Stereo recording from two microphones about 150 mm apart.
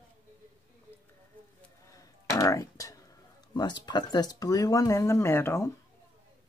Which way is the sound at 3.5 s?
30° left (ahead or behind).